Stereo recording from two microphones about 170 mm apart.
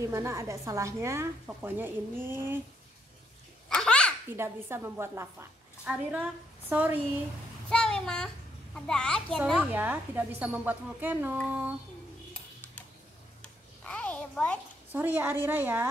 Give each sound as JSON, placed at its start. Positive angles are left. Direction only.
{"t": 0.0, "sound": "a woman's voice", "side_deg": -20}
{"t": 3.6, "sound": "a sound", "side_deg": 5}
{"t": 4.3, "sound": "a woman's voice", "side_deg": -15}
{"t": 7.7, "sound": "a child's voice", "side_deg": 5}
{"t": 9.6, "sound": "a woman's voice", "side_deg": -10}
{"t": 13.8, "sound": "a sound", "side_deg": 5}
{"t": 14.9, "sound": "a woman's voice", "side_deg": -10}